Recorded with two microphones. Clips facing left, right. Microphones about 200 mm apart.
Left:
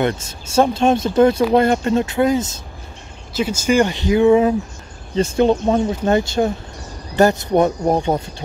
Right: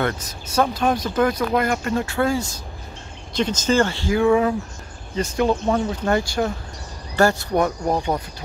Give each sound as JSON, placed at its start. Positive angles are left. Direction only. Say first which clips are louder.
{"t": 0.0, "sound": "speech", "louder": "left 4 dB", "side_deg": 25}
{"t": 3.3, "sound": "speech", "louder": "left 3 dB", "side_deg": 10}